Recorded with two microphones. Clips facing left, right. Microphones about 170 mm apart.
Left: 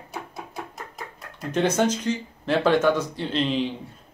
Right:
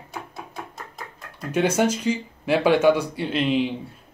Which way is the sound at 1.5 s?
10° right (ahead or behind).